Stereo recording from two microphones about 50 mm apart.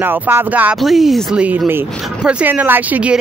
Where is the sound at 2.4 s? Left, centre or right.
Right.